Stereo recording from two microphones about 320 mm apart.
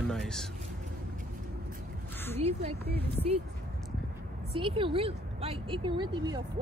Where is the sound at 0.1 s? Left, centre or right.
Centre.